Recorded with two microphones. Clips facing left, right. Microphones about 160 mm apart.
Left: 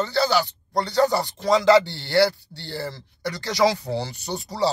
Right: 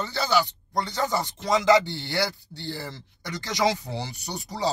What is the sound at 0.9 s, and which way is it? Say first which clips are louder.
Speech: left 10 dB; 20° right (ahead or behind).